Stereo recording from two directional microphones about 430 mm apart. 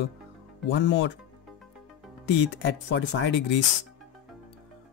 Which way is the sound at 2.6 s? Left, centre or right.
Left.